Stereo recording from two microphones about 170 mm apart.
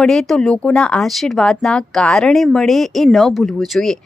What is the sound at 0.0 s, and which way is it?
Speech, centre (ahead or behind).